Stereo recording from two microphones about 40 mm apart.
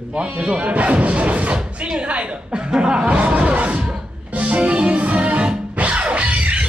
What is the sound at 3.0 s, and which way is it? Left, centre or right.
Music, right.